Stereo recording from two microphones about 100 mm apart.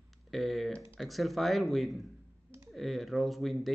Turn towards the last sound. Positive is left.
turn(degrees=0)  # may be behind; listen again after turning